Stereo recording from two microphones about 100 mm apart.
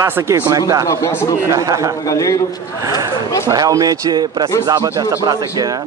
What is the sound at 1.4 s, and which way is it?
Speech, 35° right (ahead or behind).